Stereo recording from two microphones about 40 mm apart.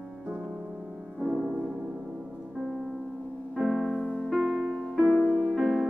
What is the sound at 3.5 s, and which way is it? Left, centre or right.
Music, centre.